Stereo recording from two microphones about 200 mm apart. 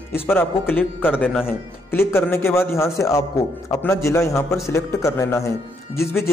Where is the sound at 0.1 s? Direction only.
10° left (ahead or behind).